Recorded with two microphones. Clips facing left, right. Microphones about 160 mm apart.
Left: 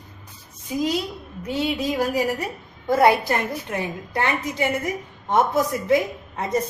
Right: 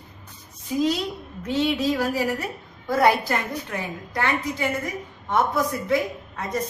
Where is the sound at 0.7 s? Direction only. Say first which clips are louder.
Right 1 dB; 10° left (ahead or behind).